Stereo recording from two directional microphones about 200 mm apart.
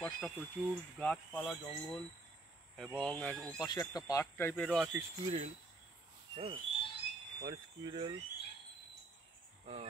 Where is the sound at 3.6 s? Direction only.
20° left (ahead or behind); by 4.9 s centre (ahead or behind).